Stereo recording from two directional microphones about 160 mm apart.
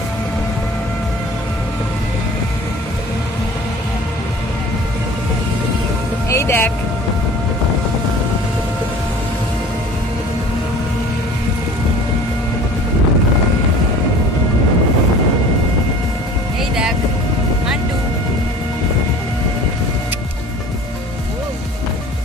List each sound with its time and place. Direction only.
6.2 s music: 15° left (ahead or behind)